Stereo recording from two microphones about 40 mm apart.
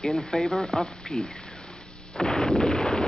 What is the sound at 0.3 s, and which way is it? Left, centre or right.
Speech, centre.